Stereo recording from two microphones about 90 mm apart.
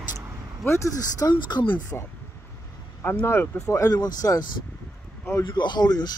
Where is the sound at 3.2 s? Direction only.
25° left (ahead or behind).